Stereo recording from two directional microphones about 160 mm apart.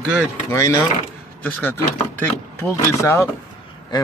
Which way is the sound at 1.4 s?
10° left (ahead or behind).